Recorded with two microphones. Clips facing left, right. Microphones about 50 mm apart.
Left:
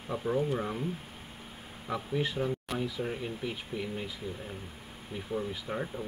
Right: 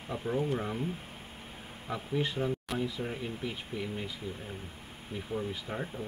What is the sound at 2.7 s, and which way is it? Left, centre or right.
Speech, centre.